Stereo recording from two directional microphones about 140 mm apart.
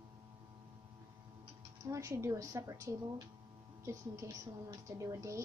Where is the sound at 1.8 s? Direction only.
20° right (ahead or behind).